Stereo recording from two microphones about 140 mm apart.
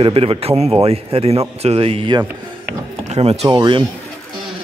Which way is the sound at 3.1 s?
45° right (ahead or behind).